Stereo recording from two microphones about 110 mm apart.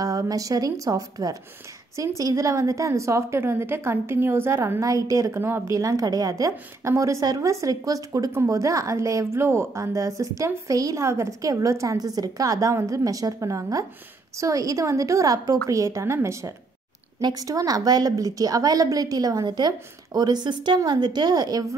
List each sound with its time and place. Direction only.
0.0 s a woman's voice: 35° right (ahead or behind)